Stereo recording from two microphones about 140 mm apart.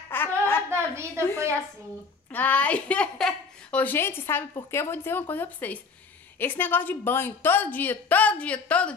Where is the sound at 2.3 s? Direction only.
10° left (ahead or behind).